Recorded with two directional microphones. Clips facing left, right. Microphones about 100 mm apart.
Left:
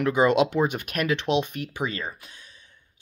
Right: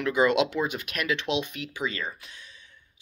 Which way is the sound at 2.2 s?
40° left (ahead or behind).